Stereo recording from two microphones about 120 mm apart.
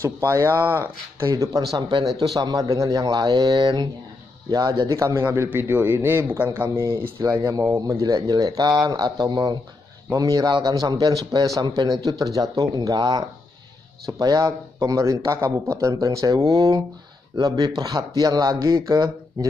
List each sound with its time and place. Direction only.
0.0 s a man's voice: 25° right (ahead or behind)
1.3 s a man's voice: 30° right (ahead or behind)